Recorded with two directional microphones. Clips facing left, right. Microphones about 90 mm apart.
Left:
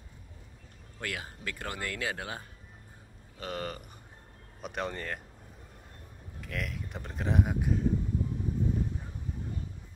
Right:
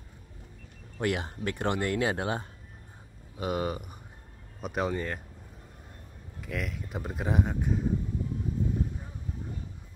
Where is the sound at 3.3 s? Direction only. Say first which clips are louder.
Right 6 dB; 10° right (ahead or behind).